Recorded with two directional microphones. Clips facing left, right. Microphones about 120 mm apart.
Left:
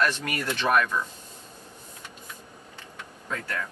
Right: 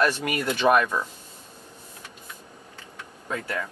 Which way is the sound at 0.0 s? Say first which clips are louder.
Right 3 dB; 15° right (ahead or behind).